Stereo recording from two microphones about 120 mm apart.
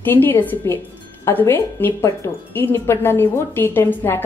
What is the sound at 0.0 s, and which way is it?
A woman's voice, 15° left (ahead or behind).